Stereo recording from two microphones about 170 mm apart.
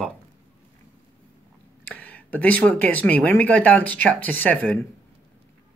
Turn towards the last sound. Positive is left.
turn(degrees=10)  # may be behind; listen again after turning